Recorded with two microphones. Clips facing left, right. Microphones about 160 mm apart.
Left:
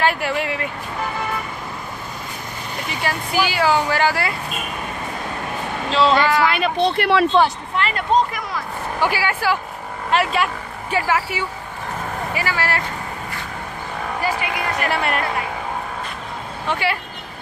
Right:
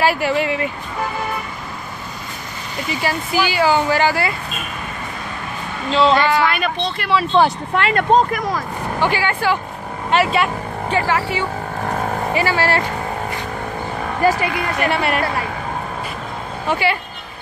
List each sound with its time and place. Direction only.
0.0 s speech: 5° right (ahead or behind)
2.9 s speech: 5° right (ahead or behind)
5.9 s speech: centre (ahead or behind)
6.9 s speech: 60° left (ahead or behind)
7.7 s speech: 55° right (ahead or behind)
9.0 s speech: 5° left (ahead or behind)
12.4 s speech: 30° right (ahead or behind)
14.8 s speech: centre (ahead or behind)
16.6 s speech: centre (ahead or behind)